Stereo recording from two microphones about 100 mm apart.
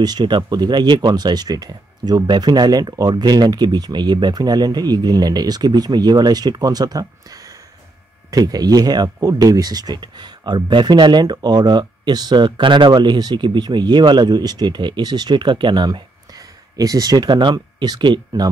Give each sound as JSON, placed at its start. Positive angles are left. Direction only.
{"t": 0.0, "sound": "speech", "side_deg": -45}
{"t": 8.3, "sound": "speech", "side_deg": -40}